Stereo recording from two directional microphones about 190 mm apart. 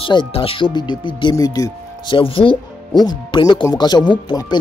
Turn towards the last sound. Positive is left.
turn(degrees=20)  # may be behind; listen again after turning